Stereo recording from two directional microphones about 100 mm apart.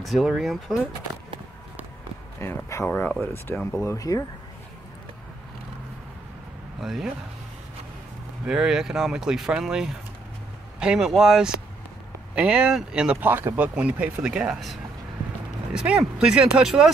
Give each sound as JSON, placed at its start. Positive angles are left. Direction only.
{"t": 0.0, "sound": "speech", "side_deg": 0}
{"t": 2.4, "sound": "speech", "side_deg": 30}
{"t": 6.8, "sound": "speech", "side_deg": 0}
{"t": 8.5, "sound": "speech", "side_deg": -5}